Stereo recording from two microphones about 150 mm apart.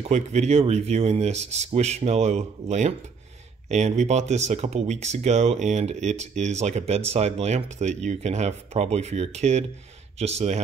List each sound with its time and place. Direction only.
0.0 s speech: 50° right (ahead or behind)